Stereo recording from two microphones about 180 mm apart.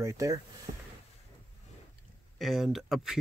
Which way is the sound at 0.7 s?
35° right (ahead or behind).